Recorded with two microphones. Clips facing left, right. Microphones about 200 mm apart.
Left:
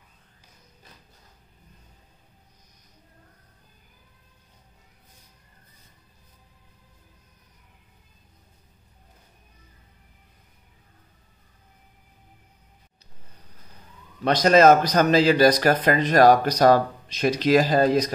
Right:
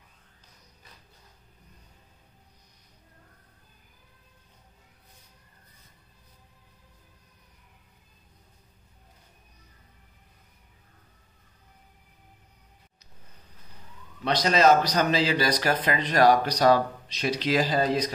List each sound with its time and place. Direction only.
14.2 s a man's voice: 50° left (ahead or behind)